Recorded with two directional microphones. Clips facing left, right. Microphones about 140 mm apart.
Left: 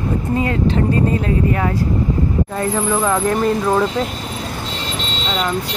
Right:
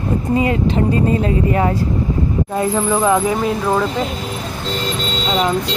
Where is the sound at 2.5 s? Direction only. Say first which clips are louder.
Right 4 dB; 15° right (ahead or behind).